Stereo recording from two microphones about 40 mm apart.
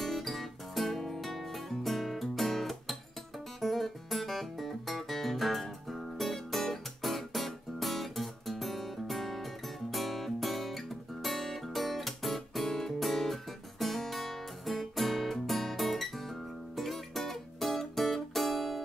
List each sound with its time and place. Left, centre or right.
0.0 s music: centre